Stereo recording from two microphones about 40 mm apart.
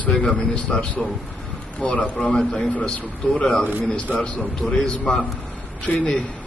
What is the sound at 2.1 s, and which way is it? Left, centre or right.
Speech, left.